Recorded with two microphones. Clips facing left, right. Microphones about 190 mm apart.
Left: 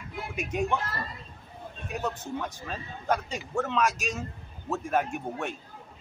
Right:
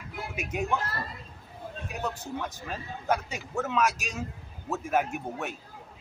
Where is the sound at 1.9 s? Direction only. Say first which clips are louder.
Left 2 dB; centre (ahead or behind).